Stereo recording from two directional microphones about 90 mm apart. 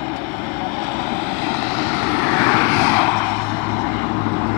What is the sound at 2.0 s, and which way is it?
Vehicle, 25° left (ahead or behind).